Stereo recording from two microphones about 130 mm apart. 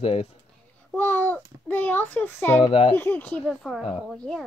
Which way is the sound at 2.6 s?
45° left (ahead or behind).